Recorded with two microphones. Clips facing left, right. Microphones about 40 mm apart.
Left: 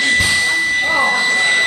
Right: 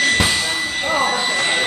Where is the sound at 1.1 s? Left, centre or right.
Centre.